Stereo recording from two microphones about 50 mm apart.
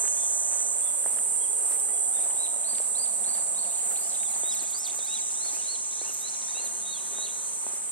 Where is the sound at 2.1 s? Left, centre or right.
Left.